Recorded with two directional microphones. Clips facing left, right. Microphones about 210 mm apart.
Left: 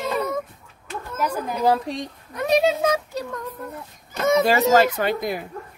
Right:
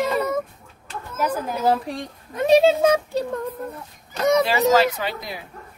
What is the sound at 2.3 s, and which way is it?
Speech, 25° right (ahead or behind).